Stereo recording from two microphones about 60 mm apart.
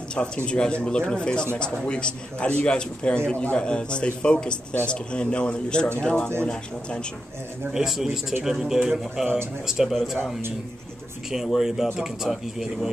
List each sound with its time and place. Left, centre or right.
0.2 s a man's voice: centre
7.7 s a man's voice: centre
11.2 s speech: centre